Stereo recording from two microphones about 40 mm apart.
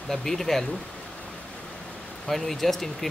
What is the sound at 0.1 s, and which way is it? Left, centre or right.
Speech, centre.